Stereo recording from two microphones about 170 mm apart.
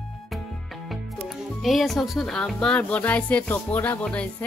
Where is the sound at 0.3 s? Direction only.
Centre (ahead or behind).